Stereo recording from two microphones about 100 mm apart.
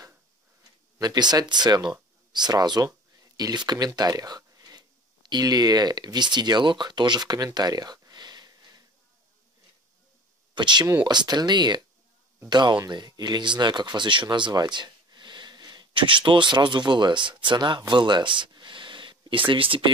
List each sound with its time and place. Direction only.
1.0 s speech: 45° right (ahead or behind)
10.5 s speech: 50° right (ahead or behind)